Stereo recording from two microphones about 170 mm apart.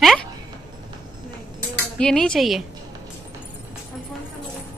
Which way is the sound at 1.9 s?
5° left (ahead or behind).